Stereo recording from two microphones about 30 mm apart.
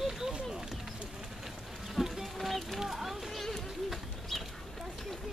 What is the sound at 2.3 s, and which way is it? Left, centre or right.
Speech, centre.